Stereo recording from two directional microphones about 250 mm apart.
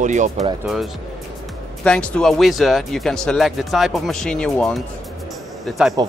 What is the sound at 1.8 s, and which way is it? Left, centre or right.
Speech, centre.